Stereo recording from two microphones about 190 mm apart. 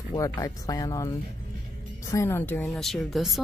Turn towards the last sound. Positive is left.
turn(degrees=0)  # may be behind; listen again after turning